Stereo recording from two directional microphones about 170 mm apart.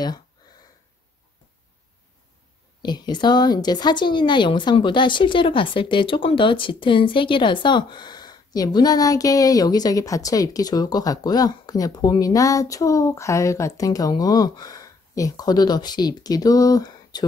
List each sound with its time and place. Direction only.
2.8 s a woman's voice: 25° left (ahead or behind)